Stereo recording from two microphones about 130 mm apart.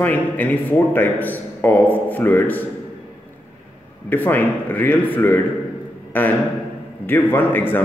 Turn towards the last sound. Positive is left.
turn(degrees=15)  # may be behind; listen again after turning